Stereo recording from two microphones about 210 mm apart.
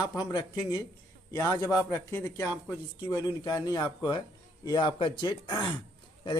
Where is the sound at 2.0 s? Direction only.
10° left (ahead or behind).